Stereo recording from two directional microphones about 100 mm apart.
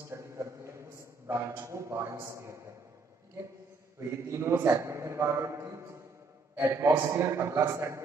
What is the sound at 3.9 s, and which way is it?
A man's voice, 30° right (ahead or behind).